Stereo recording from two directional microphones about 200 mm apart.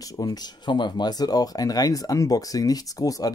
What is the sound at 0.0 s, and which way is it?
Speech, 20° left (ahead or behind).